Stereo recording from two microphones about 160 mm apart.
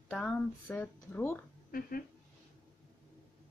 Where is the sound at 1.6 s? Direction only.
65° left (ahead or behind).